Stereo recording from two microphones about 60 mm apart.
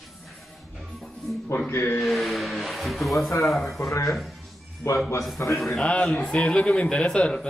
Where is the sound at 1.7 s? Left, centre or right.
Left.